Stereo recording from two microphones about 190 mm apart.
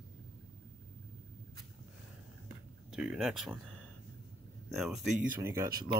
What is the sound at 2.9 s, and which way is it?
Speech, centre (ahead or behind).